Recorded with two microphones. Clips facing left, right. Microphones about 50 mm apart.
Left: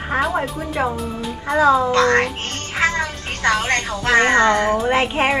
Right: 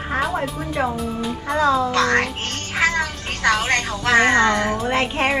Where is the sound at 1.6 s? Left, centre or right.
Centre.